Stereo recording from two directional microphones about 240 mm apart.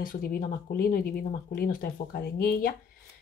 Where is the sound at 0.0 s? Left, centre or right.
Left.